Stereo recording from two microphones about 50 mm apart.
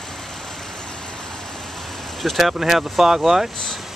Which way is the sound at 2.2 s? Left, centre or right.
Centre.